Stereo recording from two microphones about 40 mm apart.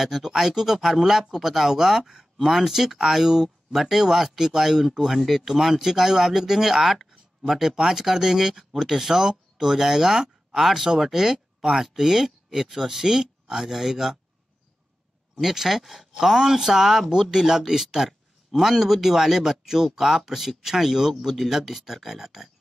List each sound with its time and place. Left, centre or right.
0.0 s speech: centre
15.4 s speech: centre